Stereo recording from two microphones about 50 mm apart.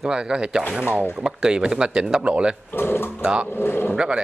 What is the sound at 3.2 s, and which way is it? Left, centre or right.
Speech, centre.